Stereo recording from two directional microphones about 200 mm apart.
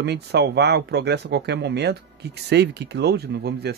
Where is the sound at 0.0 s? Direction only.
55° right (ahead or behind).